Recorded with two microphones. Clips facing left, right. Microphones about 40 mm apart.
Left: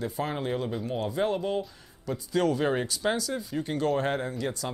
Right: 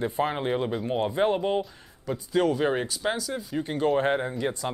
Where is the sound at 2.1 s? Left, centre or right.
Centre.